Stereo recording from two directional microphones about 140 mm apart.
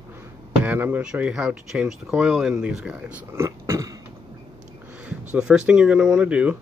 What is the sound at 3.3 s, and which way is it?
Speech, 20° right (ahead or behind).